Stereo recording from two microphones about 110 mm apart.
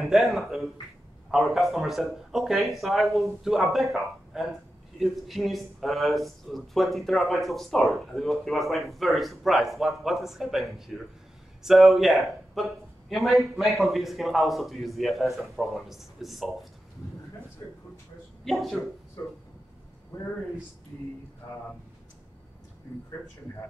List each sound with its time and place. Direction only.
0.0 s speech: centre (ahead or behind)
18.4 s speech: centre (ahead or behind)
19.2 s speech: 25° left (ahead or behind)